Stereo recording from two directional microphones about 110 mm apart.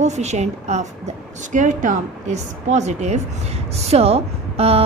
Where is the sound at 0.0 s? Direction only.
90° right.